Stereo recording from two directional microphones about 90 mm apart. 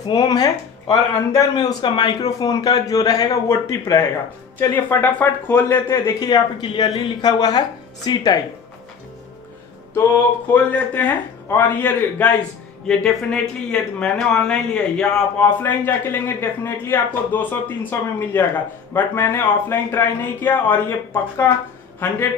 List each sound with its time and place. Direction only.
0.0 s speech: 50° left (ahead or behind)
3.4 s speech: 30° left (ahead or behind)
6.1 s speech: 50° left (ahead or behind)
10.5 s speech: 20° left (ahead or behind)
12.8 s speech: 10° left (ahead or behind)